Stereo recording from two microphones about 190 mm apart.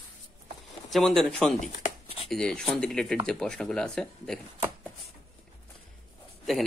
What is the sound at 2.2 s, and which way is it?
Speech, 5° left (ahead or behind).